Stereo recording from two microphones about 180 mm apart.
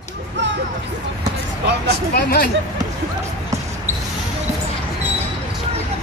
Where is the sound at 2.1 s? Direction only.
60° left (ahead or behind).